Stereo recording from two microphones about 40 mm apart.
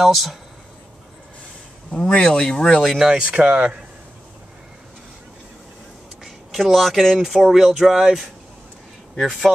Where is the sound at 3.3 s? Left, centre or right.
Right.